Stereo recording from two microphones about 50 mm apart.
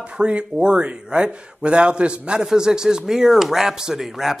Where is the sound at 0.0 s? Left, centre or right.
Right.